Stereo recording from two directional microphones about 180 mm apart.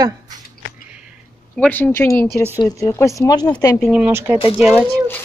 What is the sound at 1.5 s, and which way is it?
Speech, 5° left (ahead or behind).